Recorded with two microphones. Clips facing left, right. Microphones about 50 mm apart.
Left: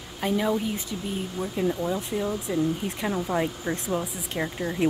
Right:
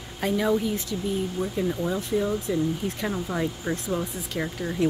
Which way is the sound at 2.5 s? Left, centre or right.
Left.